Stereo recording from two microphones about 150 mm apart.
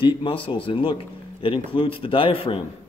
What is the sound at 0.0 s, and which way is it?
A man's voice, 35° left (ahead or behind).